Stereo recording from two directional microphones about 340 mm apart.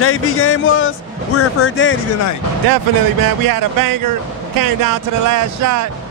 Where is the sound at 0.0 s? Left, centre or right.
Left.